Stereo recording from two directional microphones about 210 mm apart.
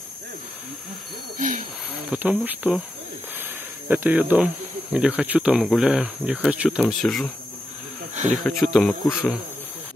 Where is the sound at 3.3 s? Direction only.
10° right (ahead or behind).